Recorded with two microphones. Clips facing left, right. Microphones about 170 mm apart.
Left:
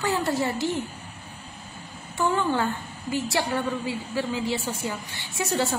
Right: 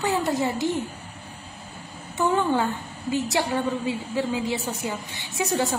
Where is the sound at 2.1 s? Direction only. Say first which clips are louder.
Right 2 dB; 15° right (ahead or behind).